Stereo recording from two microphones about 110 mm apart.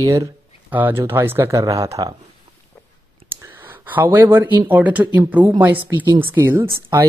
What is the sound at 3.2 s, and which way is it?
Speech, 20° right (ahead or behind).